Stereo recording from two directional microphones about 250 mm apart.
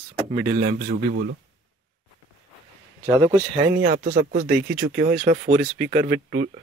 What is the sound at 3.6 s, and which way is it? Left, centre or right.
Speech, right.